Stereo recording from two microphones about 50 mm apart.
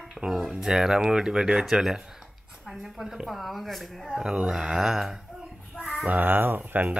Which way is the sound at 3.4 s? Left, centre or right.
Centre.